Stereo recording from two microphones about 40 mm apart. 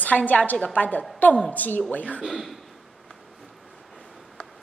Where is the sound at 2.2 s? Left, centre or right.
Centre.